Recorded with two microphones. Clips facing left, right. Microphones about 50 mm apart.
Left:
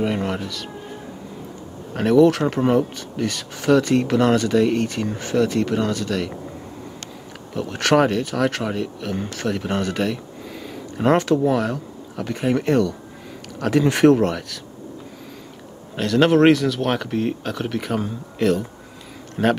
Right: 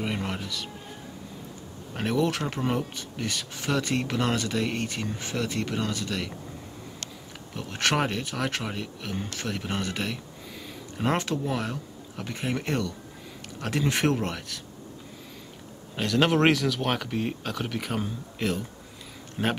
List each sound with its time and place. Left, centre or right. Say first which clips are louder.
0.1 s speech: left 7 dB; left
2.0 s speech: left 11 dB; left
4.6 s speech: left 10 dB; right
5.1 s speech: left 10 dB; left
7.5 s speech: left 9 dB; left
16.0 s speech: left 7 dB; centre
19.4 s speech: left 9 dB; centre